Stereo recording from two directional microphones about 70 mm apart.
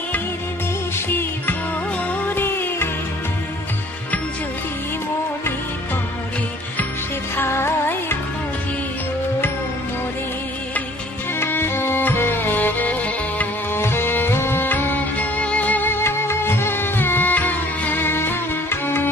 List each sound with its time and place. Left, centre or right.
0.9 s music: left
7.3 s music: left
11.3 s music: left
13.7 s music: left